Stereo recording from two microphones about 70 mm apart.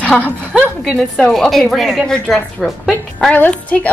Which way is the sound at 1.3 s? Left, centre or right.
Centre.